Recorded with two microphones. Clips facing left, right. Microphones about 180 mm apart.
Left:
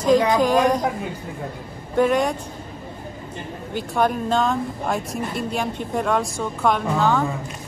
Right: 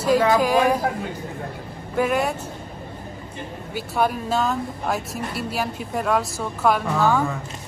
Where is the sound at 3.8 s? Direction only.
5° right (ahead or behind).